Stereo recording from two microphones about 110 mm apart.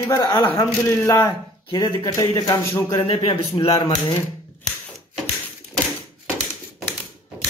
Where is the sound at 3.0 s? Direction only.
65° left (ahead or behind).